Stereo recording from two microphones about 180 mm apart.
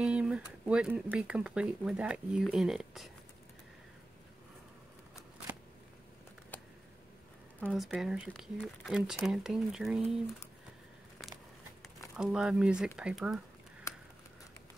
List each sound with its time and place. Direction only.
0.0 s speech: 5° right (ahead or behind)
7.6 s speech: centre (ahead or behind)
12.2 s speech: 5° right (ahead or behind)
13.9 s a sound: 15° left (ahead or behind)